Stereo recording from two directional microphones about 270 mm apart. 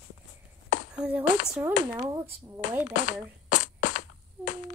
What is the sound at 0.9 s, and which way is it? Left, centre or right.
Speech, centre.